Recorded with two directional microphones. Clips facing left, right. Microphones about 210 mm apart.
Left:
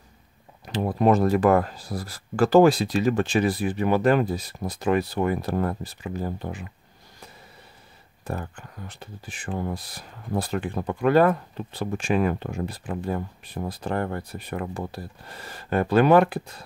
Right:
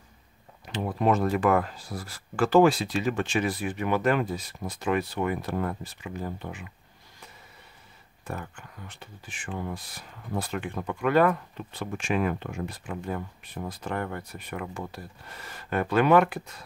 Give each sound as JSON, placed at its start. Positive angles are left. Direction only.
{"t": 0.7, "sound": "speech", "side_deg": 40}
{"t": 8.2, "sound": "speech", "side_deg": 35}